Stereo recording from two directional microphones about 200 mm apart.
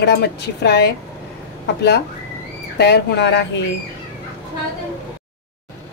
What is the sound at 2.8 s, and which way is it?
Speech, 55° left (ahead or behind).